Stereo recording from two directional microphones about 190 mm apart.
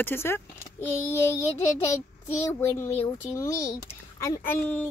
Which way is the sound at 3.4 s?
15° left (ahead or behind).